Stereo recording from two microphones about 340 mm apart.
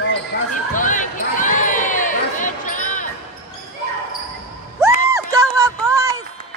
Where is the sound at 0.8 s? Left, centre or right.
Left.